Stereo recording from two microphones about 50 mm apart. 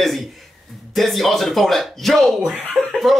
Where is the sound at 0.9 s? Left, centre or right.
Centre.